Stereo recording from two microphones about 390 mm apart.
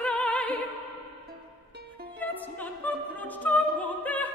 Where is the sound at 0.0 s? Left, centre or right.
Centre.